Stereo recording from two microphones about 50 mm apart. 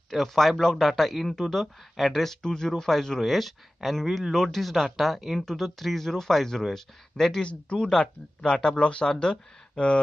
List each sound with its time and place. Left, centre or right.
0.1 s speech: centre
2.4 s speech: centre
8.5 s speech: centre
8.7 s speech: left